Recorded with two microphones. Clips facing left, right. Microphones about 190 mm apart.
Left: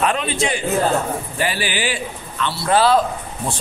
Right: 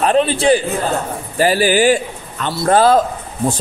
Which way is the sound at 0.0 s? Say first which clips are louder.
Right 6 dB; 35° right (ahead or behind).